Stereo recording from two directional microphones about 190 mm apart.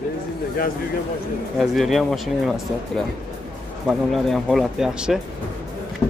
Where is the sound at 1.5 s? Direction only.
Centre (ahead or behind).